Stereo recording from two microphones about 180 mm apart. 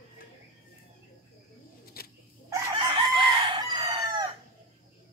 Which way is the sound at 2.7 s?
25° right (ahead or behind).